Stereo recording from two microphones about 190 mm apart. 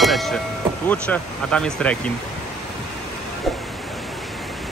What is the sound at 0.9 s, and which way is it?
Speech, 5° left (ahead or behind).